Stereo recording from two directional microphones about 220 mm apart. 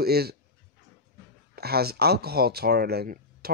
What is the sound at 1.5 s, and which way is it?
Speech, 45° right (ahead or behind).